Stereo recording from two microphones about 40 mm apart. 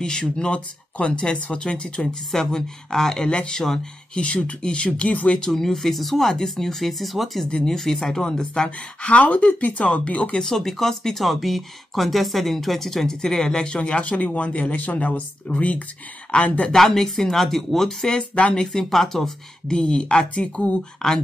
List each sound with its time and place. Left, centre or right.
0.0 s speech: left
5.4 s speech: centre
7.4 s speech: left
7.7 s speech: centre
9.0 s speech: left
10.3 s speech: centre; by 16.7 s left
16.7 s speech: centre
18.3 s speech: left
18.6 s speech: centre
19.7 s speech: left